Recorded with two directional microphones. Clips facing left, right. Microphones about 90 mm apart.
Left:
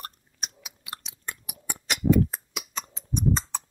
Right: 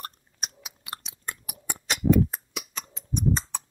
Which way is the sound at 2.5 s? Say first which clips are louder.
Left 2 dB; 30° left (ahead or behind).